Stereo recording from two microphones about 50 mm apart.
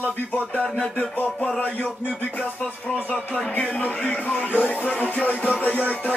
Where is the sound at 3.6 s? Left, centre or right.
Left.